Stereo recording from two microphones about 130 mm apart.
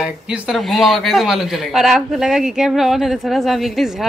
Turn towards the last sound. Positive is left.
turn(degrees=0)  # may be behind; listen again after turning